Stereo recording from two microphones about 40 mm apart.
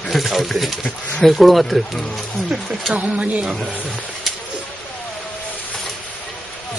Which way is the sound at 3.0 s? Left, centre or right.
Right.